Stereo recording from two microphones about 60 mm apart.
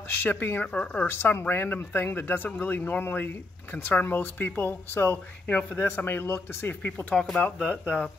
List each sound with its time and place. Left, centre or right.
0.1 s speech: left
5.5 s speech: left
7.2 s speech: left